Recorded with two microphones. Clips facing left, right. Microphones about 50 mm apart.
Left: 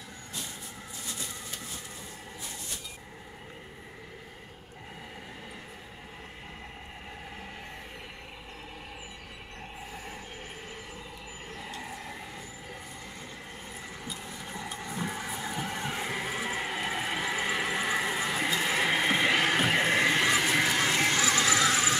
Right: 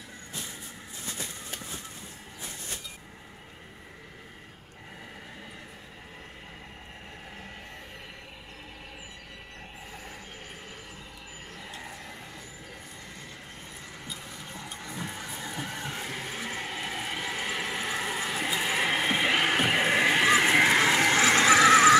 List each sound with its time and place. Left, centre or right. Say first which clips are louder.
1.1 s a sound: right 2 dB; right
14.0 s printer: even; centre
18.5 s horse: right 1 dB; centre
20.4 s horse: right 5 dB; right
21.2 s neigh: right 6 dB; right